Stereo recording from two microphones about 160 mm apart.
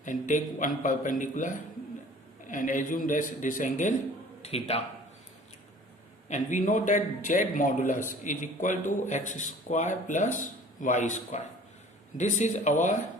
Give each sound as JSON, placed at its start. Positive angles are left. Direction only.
{"t": 0.0, "sound": "a man's voice", "side_deg": 55}
{"t": 6.2, "sound": "a man's voice", "side_deg": 50}